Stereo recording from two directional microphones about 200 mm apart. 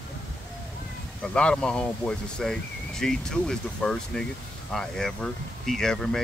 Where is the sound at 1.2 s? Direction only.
5° left (ahead or behind).